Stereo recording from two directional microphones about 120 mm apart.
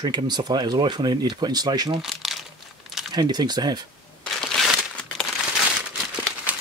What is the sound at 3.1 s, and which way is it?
Speech, 35° right (ahead or behind).